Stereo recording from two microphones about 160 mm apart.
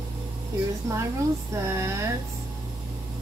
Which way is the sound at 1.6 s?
15° right (ahead or behind).